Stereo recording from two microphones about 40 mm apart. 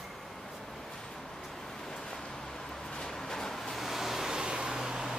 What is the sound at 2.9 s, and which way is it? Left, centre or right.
Vehicle, centre.